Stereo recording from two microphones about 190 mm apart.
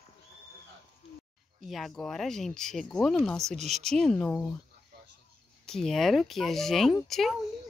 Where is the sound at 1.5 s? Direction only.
Centre (ahead or behind).